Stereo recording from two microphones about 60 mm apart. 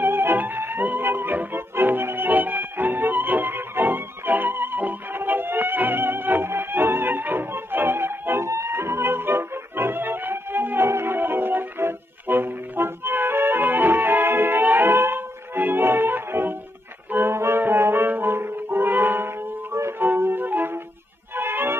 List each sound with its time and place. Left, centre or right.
0.0 s music: right
17.1 s brass instrument: right
20.1 s music: right